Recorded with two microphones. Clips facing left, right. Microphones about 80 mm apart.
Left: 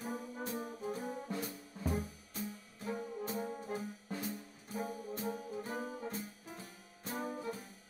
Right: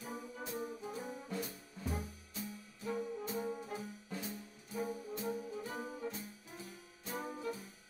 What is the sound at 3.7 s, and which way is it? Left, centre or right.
Brass instrument, left.